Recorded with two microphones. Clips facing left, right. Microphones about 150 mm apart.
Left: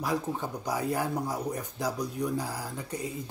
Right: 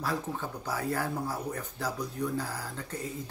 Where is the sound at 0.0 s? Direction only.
15° left (ahead or behind).